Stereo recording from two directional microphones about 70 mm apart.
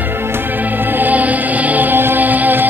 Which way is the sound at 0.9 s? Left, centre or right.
Right.